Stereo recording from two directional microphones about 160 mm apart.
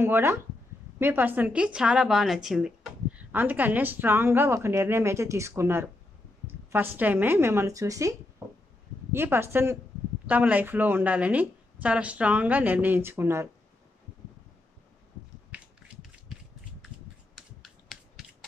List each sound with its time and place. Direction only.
0.0 s a woman's voice: 15° right (ahead or behind)
17.4 s finger snapping: centre (ahead or behind)